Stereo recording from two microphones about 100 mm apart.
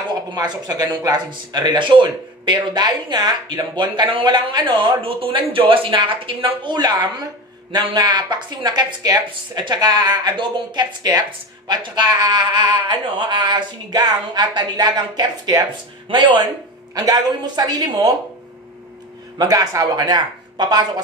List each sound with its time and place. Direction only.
0.3 s speech: 45° right (ahead or behind)
5.0 s a woman's voice: 65° right (ahead or behind); by 18.1 s 40° right (ahead or behind)
19.3 s speech: 40° right (ahead or behind)